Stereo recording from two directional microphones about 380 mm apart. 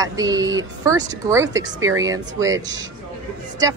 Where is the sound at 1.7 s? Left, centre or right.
Right.